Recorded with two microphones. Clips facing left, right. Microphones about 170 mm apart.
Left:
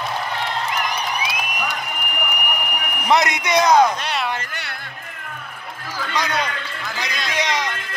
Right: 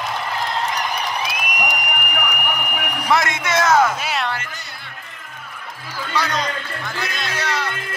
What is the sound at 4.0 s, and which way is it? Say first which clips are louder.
Music: right 1 dB; 5° right (ahead or behind).